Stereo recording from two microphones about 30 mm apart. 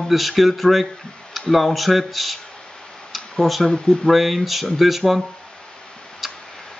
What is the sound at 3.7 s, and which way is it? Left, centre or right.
Speech, left.